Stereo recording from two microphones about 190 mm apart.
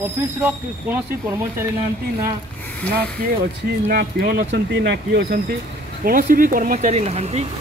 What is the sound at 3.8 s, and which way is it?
Speech, 55° right (ahead or behind).